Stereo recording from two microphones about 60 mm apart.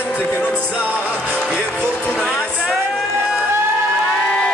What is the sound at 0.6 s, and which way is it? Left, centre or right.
Music, left.